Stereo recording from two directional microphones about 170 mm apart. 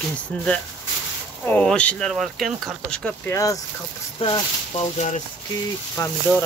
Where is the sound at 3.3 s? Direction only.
20° left (ahead or behind).